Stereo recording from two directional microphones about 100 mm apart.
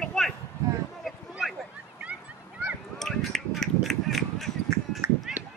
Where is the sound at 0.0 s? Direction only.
Centre (ahead or behind).